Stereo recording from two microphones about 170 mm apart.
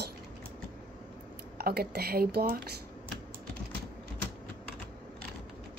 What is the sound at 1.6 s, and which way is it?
Speech, 65° right (ahead or behind).